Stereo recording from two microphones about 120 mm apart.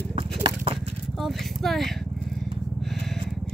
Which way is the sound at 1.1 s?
Centre (ahead or behind).